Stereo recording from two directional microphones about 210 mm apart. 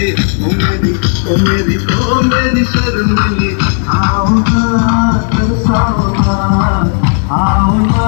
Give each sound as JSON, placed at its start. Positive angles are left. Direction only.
{"t": 1.3, "sound": "music", "side_deg": 30}